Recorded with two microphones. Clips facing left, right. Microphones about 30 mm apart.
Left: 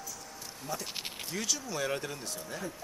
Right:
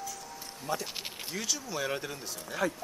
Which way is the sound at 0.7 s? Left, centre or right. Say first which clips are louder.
Right 5 dB; right.